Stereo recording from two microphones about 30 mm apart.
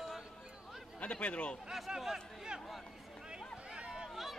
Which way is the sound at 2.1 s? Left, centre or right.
Right.